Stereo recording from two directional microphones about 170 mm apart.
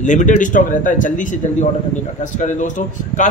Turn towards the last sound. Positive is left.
turn(degrees=45)  # may be behind; listen again after turning